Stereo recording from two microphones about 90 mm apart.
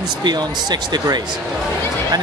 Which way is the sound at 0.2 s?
55° right (ahead or behind).